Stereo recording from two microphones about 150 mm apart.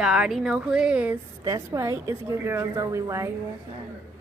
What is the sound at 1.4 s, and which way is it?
A woman's voice, 20° right (ahead or behind).